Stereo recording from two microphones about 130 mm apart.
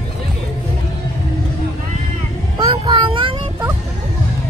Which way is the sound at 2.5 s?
40° right (ahead or behind).